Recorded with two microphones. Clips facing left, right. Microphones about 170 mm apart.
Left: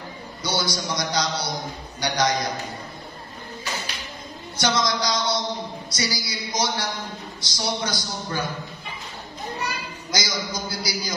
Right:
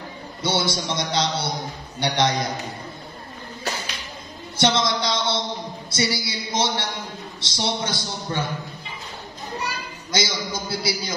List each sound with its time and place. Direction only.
0.4 s a man's voice: 25° right (ahead or behind)
4.6 s a man's voice: 25° right (ahead or behind)
10.1 s a sound: 25° right (ahead or behind)